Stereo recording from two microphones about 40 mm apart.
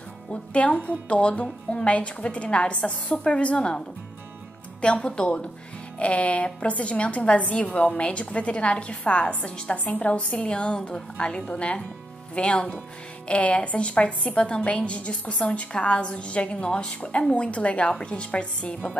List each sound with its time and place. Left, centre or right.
0.3 s a woman's voice: left
4.8 s a woman's voice: left